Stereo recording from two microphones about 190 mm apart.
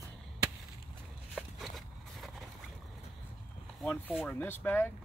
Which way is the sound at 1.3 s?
Centre (ahead or behind).